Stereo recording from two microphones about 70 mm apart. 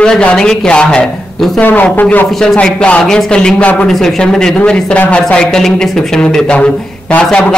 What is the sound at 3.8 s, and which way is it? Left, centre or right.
Speech, centre.